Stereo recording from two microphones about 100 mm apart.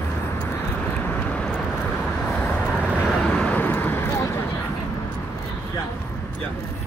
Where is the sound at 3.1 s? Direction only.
5° left (ahead or behind); by 4.3 s 25° left (ahead or behind).